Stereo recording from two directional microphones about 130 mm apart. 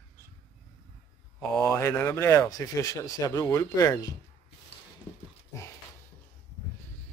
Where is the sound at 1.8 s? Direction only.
20° left (ahead or behind).